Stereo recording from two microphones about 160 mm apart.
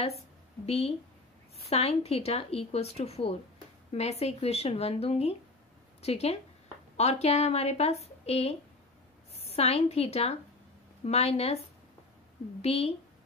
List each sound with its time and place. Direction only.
0.7 s a woman's voice: 40° left (ahead or behind)
12.6 s speech: 40° left (ahead or behind)